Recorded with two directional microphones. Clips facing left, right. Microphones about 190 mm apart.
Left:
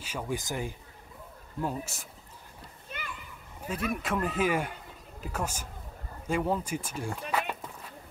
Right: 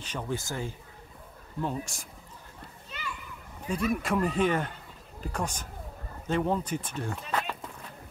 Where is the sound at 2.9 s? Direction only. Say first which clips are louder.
Left 3 dB; 55° left (ahead or behind).